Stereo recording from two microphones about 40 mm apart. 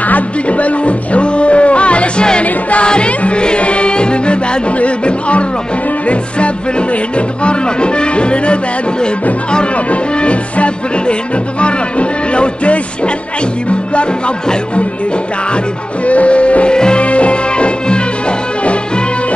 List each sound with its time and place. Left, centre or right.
0.1 s music: left
7.4 s music: left
16.1 s music: left
16.7 s music: left
17.0 s music: left